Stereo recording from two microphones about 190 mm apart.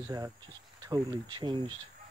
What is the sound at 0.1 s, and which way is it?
Speech, 20° right (ahead or behind).